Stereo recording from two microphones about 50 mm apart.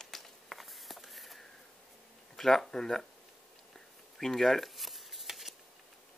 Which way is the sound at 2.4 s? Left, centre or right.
Centre.